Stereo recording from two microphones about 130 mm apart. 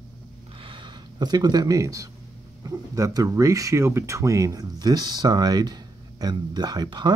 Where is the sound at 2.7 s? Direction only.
25° right (ahead or behind).